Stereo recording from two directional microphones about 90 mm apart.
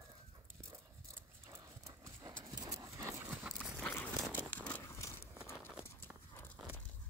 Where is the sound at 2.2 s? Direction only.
50° right (ahead or behind); by 3.3 s 30° right (ahead or behind).